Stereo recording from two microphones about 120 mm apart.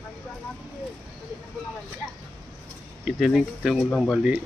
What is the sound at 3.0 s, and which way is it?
Speech, centre (ahead or behind).